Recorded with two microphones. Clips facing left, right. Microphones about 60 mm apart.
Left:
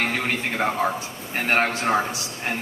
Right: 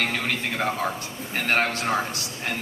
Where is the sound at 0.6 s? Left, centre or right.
Centre.